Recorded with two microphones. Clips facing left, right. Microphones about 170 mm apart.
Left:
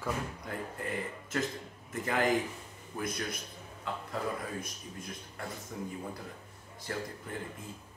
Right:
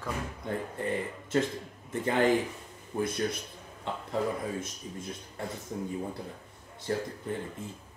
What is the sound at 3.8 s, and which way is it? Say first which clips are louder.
Speech: right 5 dB; 25° right (ahead or behind).